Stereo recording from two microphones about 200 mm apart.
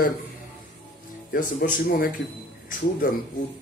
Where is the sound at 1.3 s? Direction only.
45° left (ahead or behind).